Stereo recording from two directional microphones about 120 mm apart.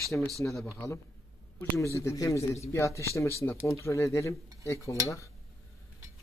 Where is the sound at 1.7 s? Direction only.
25° left (ahead or behind).